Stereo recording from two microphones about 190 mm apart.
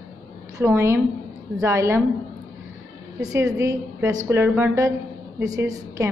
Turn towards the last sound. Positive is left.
turn(degrees=-15)  # may be behind; listen again after turning